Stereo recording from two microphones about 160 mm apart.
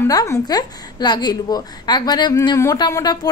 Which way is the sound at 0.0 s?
20° left (ahead or behind).